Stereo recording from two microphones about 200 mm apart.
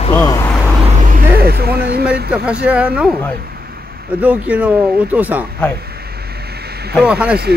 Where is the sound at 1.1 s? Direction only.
50° right (ahead or behind).